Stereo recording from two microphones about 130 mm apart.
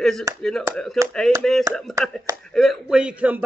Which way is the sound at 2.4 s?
Centre (ahead or behind).